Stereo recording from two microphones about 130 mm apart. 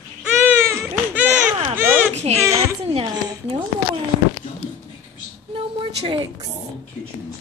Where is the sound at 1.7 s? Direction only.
20° right (ahead or behind).